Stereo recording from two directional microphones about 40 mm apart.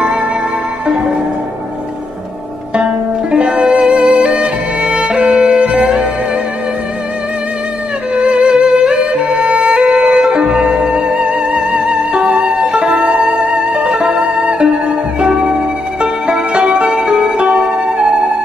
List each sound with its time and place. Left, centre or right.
2.7 s music: right
8.1 s music: right